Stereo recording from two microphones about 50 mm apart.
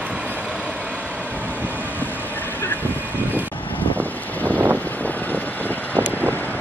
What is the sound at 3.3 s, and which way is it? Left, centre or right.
Vehicle, left.